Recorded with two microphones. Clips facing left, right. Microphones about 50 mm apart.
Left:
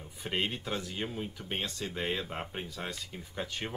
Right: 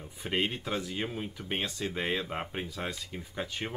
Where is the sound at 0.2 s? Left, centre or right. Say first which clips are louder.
Right 2 dB; centre.